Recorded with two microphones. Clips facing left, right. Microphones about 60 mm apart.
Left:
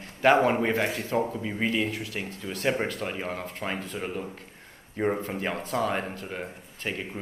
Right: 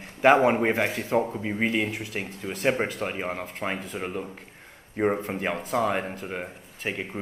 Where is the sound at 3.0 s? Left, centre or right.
Right.